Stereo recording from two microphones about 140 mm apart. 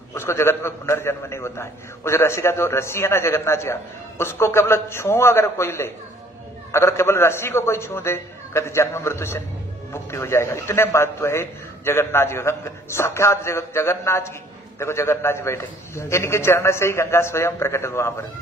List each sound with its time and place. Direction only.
0.1 s a man's voice: 20° left (ahead or behind)